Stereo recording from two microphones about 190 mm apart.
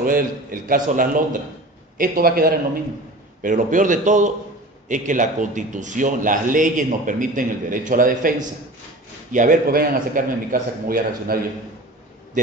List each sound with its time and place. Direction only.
0.0 s a man's voice: 45° right (ahead or behind)